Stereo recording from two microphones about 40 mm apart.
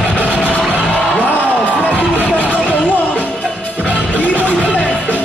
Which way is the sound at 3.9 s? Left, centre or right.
Left.